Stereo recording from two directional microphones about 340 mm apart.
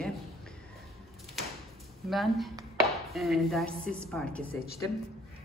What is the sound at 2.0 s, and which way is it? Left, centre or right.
A man's voice, centre.